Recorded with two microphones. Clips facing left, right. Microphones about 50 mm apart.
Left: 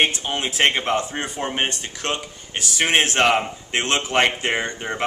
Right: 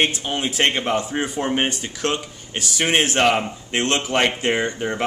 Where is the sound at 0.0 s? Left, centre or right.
Centre.